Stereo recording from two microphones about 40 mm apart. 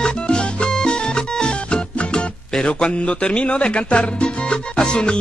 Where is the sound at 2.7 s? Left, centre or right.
Left.